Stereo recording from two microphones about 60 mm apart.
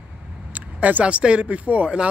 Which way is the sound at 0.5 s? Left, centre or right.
Right.